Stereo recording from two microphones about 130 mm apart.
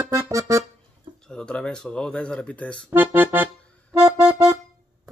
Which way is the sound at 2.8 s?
15° right (ahead or behind).